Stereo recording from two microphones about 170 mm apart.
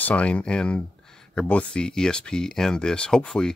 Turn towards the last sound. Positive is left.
turn(degrees=5)  # may be behind; listen again after turning